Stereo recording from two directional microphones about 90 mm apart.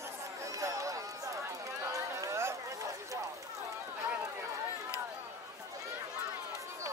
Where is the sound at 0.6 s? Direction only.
35° right (ahead or behind).